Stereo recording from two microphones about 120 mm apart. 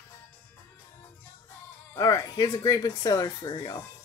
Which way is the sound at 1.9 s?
30° left (ahead or behind).